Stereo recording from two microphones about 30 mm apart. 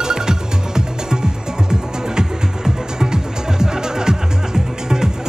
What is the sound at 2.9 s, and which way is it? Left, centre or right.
Music, right.